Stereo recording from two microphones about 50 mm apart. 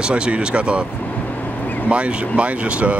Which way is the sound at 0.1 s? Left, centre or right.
Right.